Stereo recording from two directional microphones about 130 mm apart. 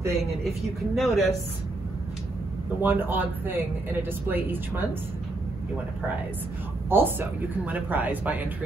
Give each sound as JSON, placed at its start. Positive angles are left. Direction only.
{"t": 0.9, "sound": "a woman's voice", "side_deg": 0}
{"t": 2.8, "sound": "speech", "side_deg": -15}
{"t": 6.9, "sound": "speech", "side_deg": -15}